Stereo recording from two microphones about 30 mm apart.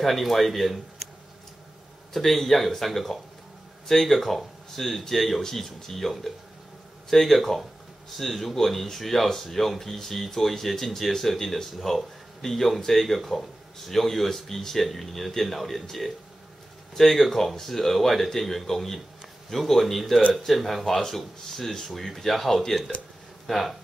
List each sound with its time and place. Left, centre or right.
0.0 s speech: centre
2.2 s speech: centre